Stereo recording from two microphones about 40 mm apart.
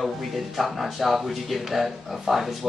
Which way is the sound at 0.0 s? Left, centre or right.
Centre.